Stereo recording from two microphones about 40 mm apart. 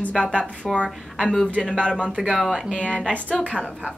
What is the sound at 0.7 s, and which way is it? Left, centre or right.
Speech, centre.